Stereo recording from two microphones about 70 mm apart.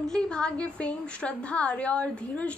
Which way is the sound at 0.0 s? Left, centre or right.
Centre.